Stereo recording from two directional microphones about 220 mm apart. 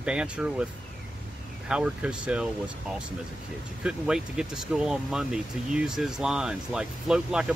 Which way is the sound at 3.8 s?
5° right (ahead or behind).